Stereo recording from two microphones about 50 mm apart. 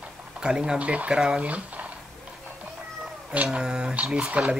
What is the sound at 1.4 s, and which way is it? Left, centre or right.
Speech, right.